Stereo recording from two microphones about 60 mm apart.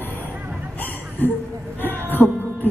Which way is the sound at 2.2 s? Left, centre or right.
Left.